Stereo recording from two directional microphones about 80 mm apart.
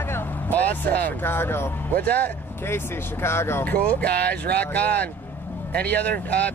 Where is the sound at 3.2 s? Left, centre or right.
Left.